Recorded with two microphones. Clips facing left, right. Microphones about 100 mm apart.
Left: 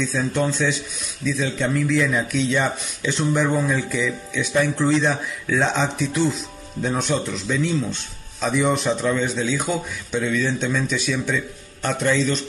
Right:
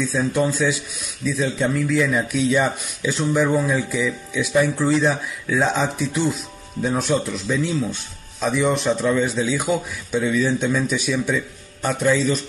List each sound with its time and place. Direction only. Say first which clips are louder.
0.0 s speech: right 2 dB; 10° right (ahead or behind)